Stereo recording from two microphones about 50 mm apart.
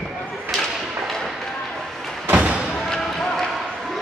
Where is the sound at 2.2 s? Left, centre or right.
Right.